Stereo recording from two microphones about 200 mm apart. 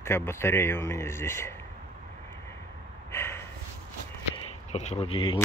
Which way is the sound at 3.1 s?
10° left (ahead or behind).